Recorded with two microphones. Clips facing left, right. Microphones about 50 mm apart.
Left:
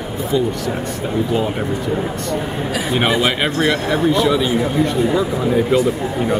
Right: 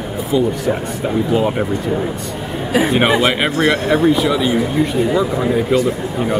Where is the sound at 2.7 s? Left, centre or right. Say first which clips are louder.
Right 7 dB; right.